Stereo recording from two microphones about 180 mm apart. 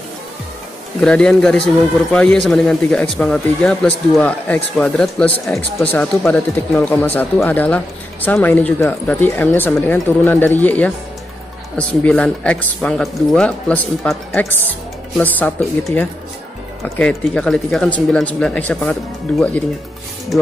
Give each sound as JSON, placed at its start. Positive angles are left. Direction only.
{"t": 1.0, "sound": "speech", "side_deg": 5}